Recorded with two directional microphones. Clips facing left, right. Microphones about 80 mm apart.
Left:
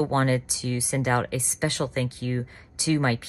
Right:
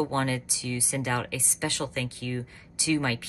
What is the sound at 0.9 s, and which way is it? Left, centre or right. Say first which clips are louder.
Speech: left 6 dB; left.